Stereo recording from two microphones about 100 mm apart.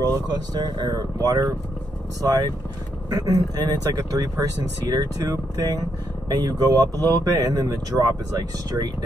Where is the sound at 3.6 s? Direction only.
40° right (ahead or behind).